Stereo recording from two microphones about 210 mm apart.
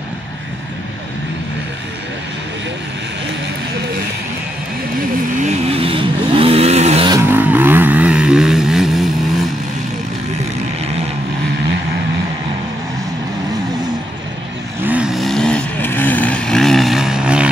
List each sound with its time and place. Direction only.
5.4 s vehicle: 30° right (ahead or behind)
7.2 s vehicle: 10° right (ahead or behind)
14.8 s vehicle: 5° right (ahead or behind)